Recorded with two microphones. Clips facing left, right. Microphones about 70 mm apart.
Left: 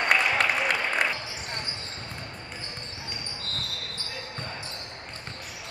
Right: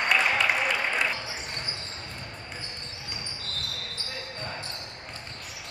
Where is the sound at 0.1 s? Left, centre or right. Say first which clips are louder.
Even; left.